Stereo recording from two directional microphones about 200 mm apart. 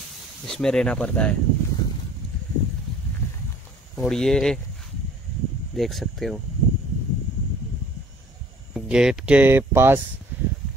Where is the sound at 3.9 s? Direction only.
5° left (ahead or behind).